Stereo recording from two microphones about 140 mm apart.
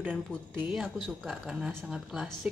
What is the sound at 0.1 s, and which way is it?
Speech, 5° left (ahead or behind).